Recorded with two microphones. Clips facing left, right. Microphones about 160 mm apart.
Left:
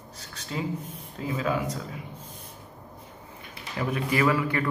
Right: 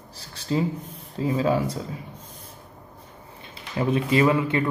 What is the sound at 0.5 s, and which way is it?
Speech, 30° right (ahead or behind).